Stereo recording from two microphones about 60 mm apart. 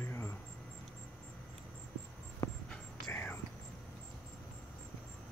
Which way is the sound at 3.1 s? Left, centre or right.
Left.